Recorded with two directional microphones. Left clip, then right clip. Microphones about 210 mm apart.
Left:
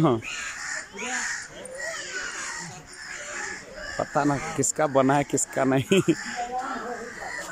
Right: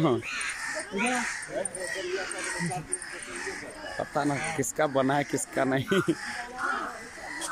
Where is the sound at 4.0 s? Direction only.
5° left (ahead or behind).